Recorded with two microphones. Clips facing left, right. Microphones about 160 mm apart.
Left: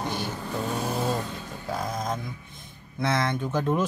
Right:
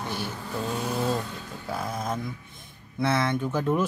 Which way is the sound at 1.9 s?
5° right (ahead or behind).